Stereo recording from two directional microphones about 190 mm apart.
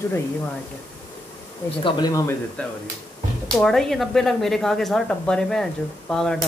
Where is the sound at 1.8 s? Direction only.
20° left (ahead or behind).